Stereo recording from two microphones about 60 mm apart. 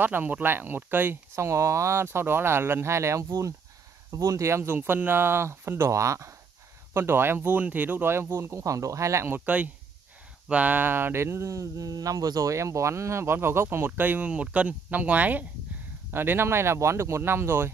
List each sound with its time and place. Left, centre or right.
0.0 s speech: right
1.3 s speech: right
3.3 s speech: right
4.6 s speech: right
6.9 s speech: right
10.5 s speech: right
14.3 s speech: right
16.1 s speech: right